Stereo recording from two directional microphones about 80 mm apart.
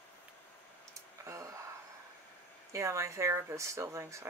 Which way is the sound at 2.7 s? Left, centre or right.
Right.